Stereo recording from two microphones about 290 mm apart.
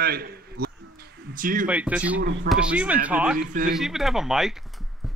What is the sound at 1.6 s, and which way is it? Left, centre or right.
Speech, centre.